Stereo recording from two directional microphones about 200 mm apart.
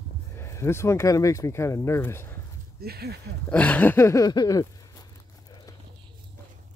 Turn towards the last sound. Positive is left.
turn(degrees=20)  # may be behind; listen again after turning